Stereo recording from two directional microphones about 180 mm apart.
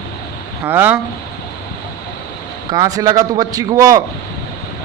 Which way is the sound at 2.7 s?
20° right (ahead or behind).